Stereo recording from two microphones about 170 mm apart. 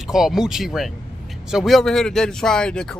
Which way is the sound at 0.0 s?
5° right (ahead or behind).